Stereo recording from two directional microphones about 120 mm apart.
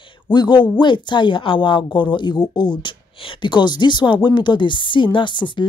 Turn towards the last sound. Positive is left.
turn(degrees=40)  # may be behind; listen again after turning